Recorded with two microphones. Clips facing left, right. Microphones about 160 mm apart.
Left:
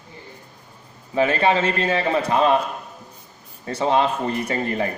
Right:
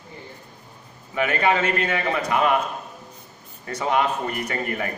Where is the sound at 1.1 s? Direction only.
30° left (ahead or behind).